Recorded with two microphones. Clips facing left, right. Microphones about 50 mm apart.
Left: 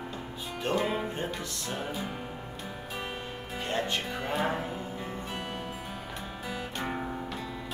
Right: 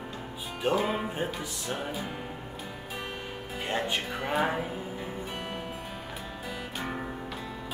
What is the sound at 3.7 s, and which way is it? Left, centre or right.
Music, centre.